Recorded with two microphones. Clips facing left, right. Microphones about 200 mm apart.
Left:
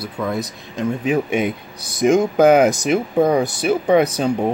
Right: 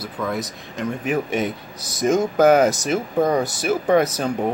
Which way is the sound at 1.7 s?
55° left (ahead or behind).